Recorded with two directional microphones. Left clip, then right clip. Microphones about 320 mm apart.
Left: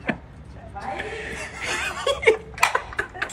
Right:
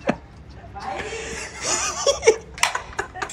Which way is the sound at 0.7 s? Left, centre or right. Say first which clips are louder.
Right 1 dB; centre.